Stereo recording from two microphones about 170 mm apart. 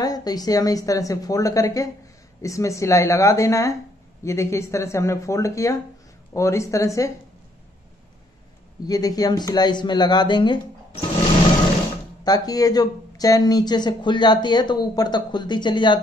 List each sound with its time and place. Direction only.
0.0 s speech: 20° left (ahead or behind)
8.8 s speech: 20° left (ahead or behind)
12.3 s speech: 20° left (ahead or behind)